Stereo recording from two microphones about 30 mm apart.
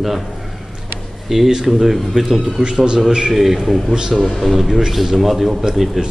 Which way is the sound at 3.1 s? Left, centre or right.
Right.